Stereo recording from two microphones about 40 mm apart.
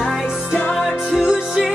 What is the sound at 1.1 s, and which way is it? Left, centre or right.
Music, centre.